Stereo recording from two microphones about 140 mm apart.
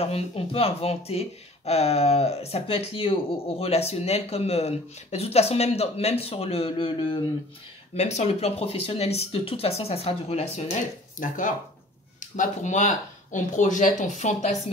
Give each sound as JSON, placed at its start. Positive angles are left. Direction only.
{"t": 0.0, "sound": "speech", "side_deg": 45}